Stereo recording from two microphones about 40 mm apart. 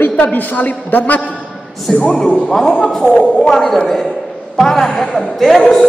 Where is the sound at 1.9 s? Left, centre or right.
Left.